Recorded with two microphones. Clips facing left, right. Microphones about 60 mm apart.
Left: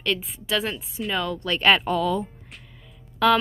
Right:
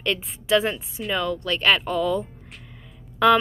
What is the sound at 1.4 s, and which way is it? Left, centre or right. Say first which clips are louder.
A woman's voice: left 4 dB; centre.